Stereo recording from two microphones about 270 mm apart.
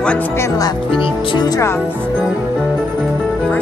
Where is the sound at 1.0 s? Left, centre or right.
Centre.